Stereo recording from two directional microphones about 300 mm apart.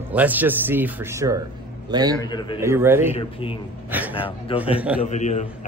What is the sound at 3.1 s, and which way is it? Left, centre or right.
A man's voice, centre.